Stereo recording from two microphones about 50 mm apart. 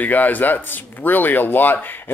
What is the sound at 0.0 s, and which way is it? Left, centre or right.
A man's voice, left.